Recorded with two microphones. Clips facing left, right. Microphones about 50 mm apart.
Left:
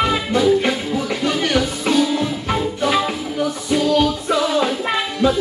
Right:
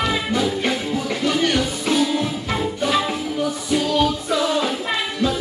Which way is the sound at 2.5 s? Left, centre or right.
Centre.